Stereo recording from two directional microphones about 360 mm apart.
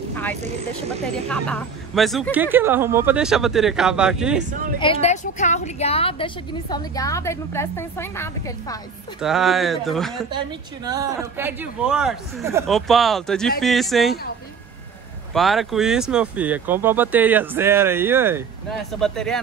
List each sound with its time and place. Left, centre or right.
1.0 s speech: centre
4.5 s speech: right
4.7 s a woman's voice: centre
15.3 s speech: centre